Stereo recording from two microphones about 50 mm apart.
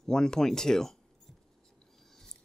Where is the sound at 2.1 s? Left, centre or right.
Centre.